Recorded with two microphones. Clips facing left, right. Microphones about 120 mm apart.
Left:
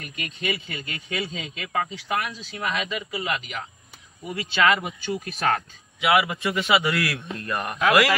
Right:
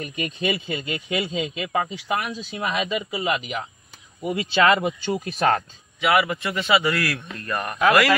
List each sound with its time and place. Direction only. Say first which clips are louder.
0.0 s speech: right 5 dB; 20° right (ahead or behind)
5.9 s a man's voice: right 1 dB; 10° left (ahead or behind)